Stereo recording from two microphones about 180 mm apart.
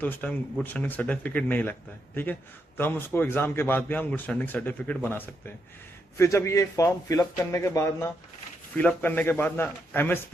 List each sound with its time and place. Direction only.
0.0 s a man's voice: 10° left (ahead or behind)